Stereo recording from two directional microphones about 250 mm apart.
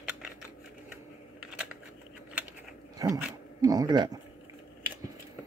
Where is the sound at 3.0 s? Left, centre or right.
Centre.